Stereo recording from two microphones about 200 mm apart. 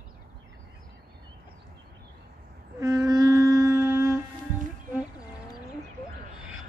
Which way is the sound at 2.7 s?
15° right (ahead or behind).